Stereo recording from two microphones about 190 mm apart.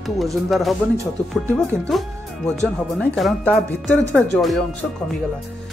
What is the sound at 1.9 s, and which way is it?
Speech, centre (ahead or behind).